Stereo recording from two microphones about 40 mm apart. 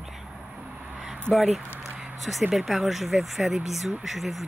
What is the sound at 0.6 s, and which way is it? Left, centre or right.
Vehicle, right.